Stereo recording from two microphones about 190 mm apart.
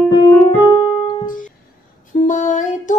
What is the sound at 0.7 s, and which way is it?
Keyboard, 20° left (ahead or behind).